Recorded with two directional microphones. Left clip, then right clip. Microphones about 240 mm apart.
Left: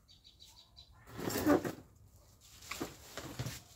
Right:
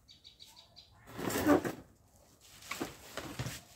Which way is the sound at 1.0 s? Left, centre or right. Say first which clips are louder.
Right 2 dB; centre.